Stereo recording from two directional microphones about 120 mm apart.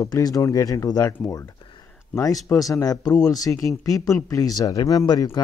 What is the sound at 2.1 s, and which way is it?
Speech, 30° left (ahead or behind).